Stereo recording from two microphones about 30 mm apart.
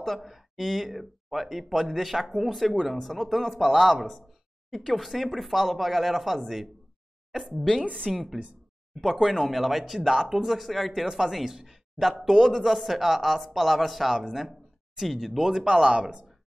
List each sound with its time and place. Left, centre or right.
0.2 s speech: centre
7.5 s a woman's voice: centre
8.1 s speech: centre
12.5 s speech: centre
15.6 s speech: right